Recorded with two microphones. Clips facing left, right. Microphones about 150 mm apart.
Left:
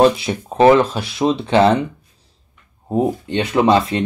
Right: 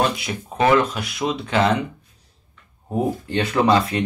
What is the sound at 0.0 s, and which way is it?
Speech, 30° left (ahead or behind).